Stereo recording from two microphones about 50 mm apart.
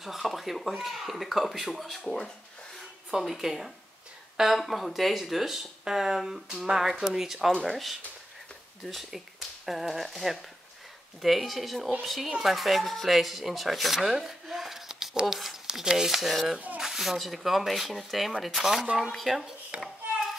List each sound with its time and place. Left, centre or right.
0.0 s speech: centre
14.9 s a sound: centre
15.7 s speech: centre
16.5 s speech: right
16.8 s speech: centre
19.7 s a child's voice: right